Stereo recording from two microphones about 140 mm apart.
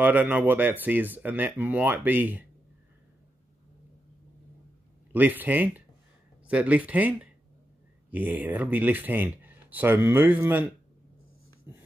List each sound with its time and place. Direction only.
0.0 s speech: 15° right (ahead or behind)
5.1 s speech: 15° right (ahead or behind)
11.7 s a sound: 15° right (ahead or behind)